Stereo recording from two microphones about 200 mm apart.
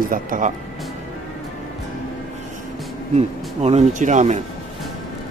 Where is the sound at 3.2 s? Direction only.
35° right (ahead or behind).